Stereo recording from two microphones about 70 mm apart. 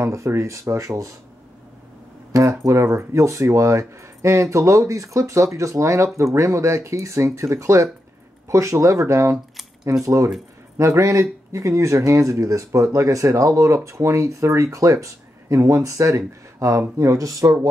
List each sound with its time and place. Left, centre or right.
0.0 s speech: right
2.3 s speech: right